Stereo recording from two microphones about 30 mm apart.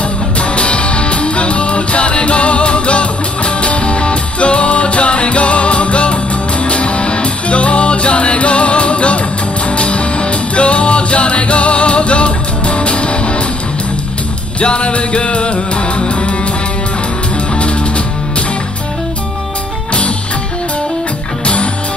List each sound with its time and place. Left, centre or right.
0.4 s music: left
14.6 s music: left
17.6 s music: left